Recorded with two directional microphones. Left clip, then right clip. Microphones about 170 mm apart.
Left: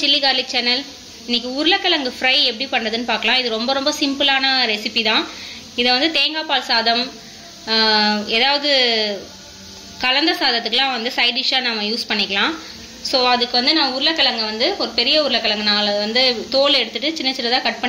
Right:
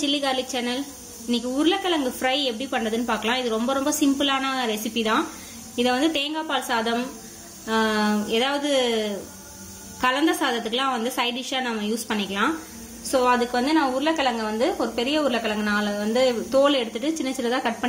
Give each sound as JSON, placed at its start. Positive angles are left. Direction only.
{"t": 0.0, "sound": "a woman's voice", "side_deg": -45}
{"t": 13.1, "sound": "a woman's voice", "side_deg": -55}